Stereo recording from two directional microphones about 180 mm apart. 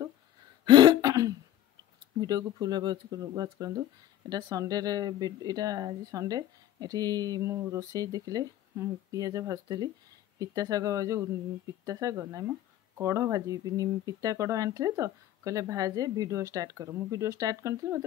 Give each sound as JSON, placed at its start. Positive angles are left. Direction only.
{"t": 0.7, "sound": "throat clearing", "side_deg": -25}
{"t": 2.1, "sound": "speech", "side_deg": -20}